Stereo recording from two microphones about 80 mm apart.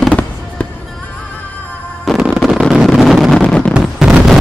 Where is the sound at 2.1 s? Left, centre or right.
Centre.